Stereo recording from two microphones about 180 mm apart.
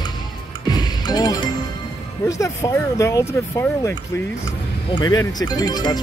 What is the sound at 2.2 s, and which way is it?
Speech, 15° left (ahead or behind).